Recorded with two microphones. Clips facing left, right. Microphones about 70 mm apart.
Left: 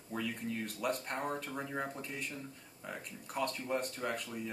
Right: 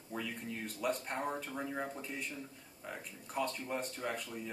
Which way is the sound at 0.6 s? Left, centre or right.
Centre.